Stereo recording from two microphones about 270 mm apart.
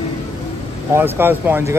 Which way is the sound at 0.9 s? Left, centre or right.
Centre.